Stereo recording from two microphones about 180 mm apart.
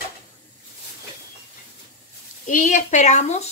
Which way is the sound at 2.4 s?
45° left (ahead or behind).